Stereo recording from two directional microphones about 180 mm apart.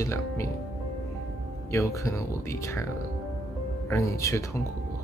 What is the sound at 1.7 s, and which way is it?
Speech, 15° left (ahead or behind).